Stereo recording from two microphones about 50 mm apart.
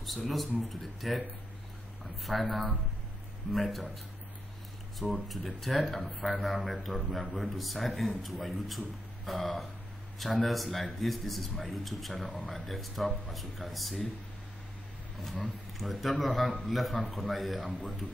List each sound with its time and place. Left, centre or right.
0.0 s a man's voice: centre
2.3 s a man's voice: centre
3.5 s a man's voice: centre
5.3 s a man's voice: centre
15.8 s a man's voice: centre